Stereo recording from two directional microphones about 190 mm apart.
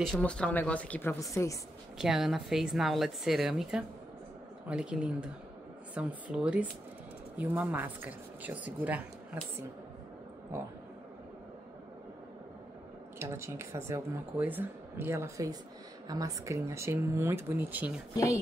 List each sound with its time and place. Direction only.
0.0 s a woman's voice: 5° left (ahead or behind)
2.0 s a woman's voice: centre (ahead or behind)
13.2 s speech: 15° right (ahead or behind)
18.1 s a woman's voice: 15° left (ahead or behind)